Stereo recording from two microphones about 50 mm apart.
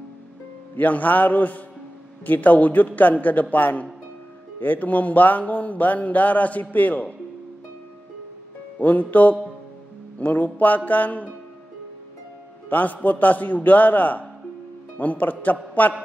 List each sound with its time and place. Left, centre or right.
0.7 s speech: left
8.7 s speech: left
12.6 s speech: left